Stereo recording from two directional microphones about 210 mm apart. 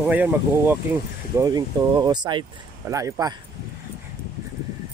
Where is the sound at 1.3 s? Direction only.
20° right (ahead or behind).